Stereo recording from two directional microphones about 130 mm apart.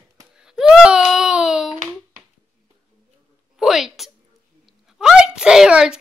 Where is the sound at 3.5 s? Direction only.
5° right (ahead or behind).